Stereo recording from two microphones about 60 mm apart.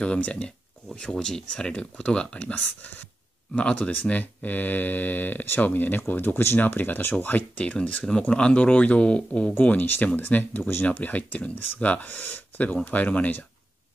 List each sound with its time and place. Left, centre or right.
0.0 s speech: centre
9.6 s speech: left